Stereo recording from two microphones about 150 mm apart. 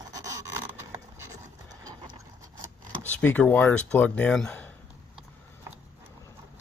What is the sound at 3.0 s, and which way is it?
Speech, 10° left (ahead or behind).